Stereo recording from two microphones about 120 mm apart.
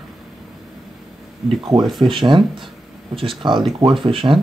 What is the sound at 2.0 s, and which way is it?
Speech, 45° right (ahead or behind).